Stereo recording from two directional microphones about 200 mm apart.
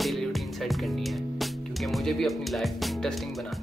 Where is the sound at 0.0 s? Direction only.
Centre (ahead or behind).